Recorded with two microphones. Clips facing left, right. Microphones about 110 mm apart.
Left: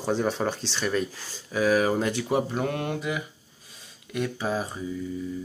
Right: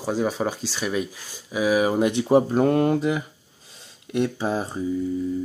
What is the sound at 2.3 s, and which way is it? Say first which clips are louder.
Speech: right 8 dB; 35° right (ahead or behind).